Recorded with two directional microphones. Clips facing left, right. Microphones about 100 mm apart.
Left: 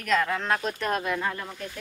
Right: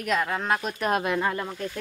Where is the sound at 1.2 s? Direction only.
35° right (ahead or behind).